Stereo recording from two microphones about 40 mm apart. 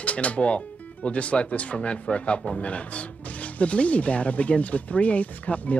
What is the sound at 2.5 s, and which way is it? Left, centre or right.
Speech, left.